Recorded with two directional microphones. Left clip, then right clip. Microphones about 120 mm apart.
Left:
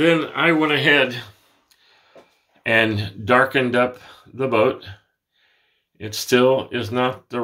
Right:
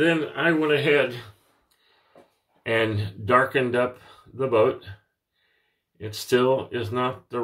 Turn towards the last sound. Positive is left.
turn(degrees=45)  # may be behind; listen again after turning